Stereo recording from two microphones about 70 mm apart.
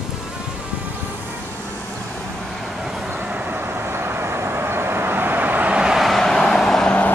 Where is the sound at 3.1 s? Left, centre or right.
Right.